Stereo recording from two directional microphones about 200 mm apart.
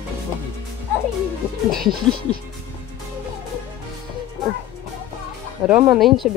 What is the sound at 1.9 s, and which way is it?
Speech, 25° right (ahead or behind).